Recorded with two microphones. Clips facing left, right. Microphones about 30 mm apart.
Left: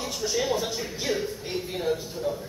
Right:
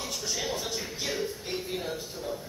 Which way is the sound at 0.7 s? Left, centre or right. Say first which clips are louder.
Left 4 dB; centre.